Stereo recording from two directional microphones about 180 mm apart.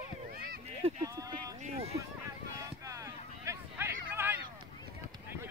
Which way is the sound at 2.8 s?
15° right (ahead or behind).